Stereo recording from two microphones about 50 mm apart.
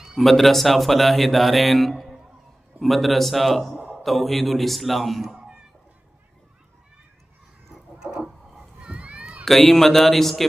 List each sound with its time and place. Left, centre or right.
0.2 s a man's voice: centre
7.7 s a sound: centre
9.4 s a man's voice: centre